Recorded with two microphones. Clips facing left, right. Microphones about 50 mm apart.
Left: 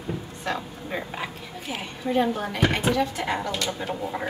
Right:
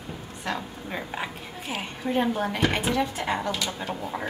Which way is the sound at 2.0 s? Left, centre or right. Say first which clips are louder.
Left 2 dB; centre.